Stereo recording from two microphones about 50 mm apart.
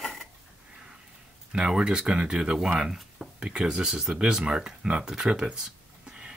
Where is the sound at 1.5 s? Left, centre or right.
Centre.